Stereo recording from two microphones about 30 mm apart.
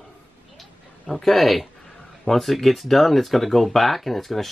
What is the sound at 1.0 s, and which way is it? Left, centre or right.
Speech, centre.